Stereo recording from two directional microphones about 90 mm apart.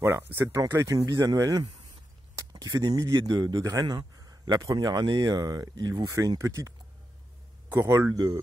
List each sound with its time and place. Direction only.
0.0 s a man's voice: 25° right (ahead or behind); by 6.0 s 50° right (ahead or behind)
6.1 s speech: 40° right (ahead or behind)
7.7 s speech: 30° right (ahead or behind)